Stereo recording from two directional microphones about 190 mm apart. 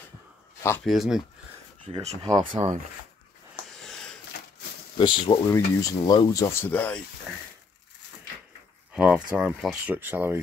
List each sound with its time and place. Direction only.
0.8 s speech: centre (ahead or behind)
1.9 s speech: 30° right (ahead or behind)
3.6 s sniff: centre (ahead or behind)
4.9 s speech: 25° left (ahead or behind); by 7.0 s 10° left (ahead or behind)
8.9 s speech: 5° right (ahead or behind)